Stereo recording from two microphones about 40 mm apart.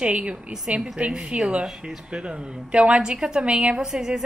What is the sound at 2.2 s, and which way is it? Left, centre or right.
A woman's voice, right.